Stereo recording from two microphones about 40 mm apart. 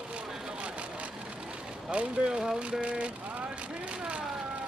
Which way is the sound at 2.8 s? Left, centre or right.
Right.